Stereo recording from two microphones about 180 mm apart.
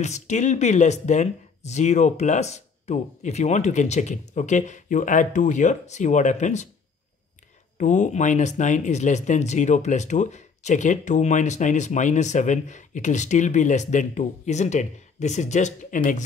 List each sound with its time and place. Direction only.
0.0 s speech: 40° left (ahead or behind)
7.7 s speech: 45° left (ahead or behind)